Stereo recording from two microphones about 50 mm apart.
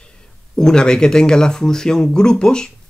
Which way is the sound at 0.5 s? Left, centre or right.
Centre.